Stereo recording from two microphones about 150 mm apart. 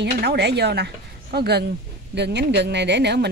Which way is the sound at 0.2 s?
90° right.